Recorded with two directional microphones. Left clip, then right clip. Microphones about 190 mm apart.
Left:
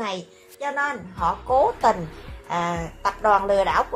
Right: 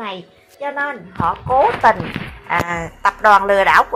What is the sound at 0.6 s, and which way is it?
A woman's voice, 20° right (ahead or behind).